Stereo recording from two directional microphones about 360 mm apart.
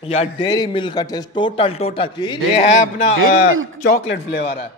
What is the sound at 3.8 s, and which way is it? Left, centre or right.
Speech, left.